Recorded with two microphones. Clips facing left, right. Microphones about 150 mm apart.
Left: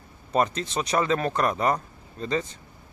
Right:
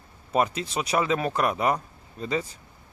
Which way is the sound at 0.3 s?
5° right (ahead or behind).